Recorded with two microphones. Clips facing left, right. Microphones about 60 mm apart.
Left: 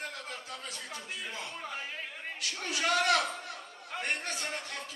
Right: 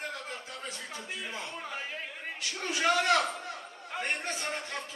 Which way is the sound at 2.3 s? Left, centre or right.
Right.